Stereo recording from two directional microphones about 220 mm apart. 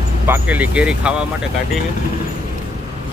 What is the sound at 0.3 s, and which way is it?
Speech, 5° right (ahead or behind).